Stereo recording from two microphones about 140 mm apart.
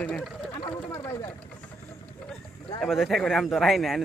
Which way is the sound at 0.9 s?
20° left (ahead or behind).